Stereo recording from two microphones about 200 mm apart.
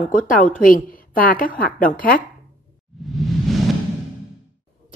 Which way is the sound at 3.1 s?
Centre (ahead or behind).